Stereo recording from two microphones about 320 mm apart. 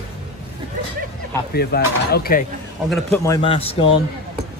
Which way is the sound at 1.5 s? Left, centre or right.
Left.